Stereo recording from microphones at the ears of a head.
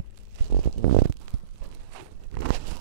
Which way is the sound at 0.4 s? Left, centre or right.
Right.